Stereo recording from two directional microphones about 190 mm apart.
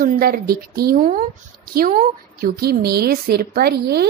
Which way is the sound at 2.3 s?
55° right (ahead or behind).